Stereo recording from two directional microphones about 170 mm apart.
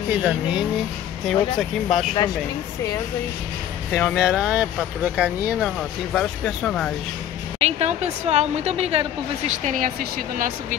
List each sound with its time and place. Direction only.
0.1 s speech: 10° right (ahead or behind)
3.9 s speech: 5° left (ahead or behind)
7.6 s a woman's voice: 40° right (ahead or behind); by 10.8 s 55° right (ahead or behind)